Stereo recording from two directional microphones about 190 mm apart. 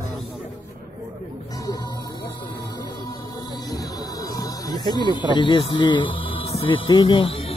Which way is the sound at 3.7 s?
20° left (ahead or behind).